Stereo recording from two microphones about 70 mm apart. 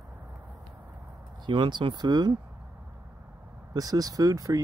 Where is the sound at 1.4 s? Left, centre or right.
Right.